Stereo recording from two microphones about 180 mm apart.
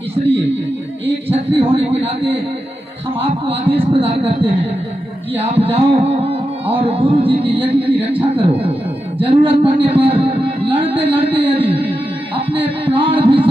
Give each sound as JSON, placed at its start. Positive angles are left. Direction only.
{"t": 1.0, "sound": "music", "side_deg": -30}
{"t": 9.2, "sound": "speech", "side_deg": -30}